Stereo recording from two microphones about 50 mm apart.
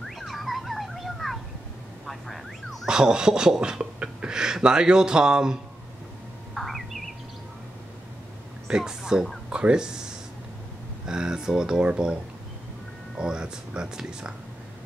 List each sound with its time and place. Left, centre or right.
0.0 s car alarm: centre
2.0 s a sound: centre
2.9 s speech: centre
6.5 s a sound: centre
8.6 s speech: centre
11.1 s speech: centre
13.2 s speech: centre